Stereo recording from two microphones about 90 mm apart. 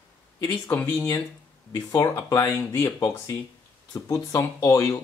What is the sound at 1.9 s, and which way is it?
Speech, 40° left (ahead or behind).